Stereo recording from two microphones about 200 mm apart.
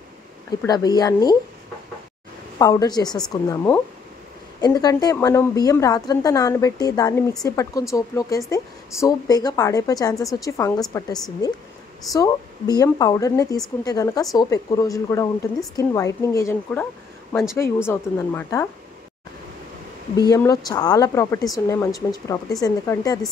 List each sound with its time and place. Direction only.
0.6 s speech: 20° left (ahead or behind)
2.6 s speech: 20° left (ahead or behind)
17.3 s speech: 5° left (ahead or behind)
20.2 s speech: 15° left (ahead or behind)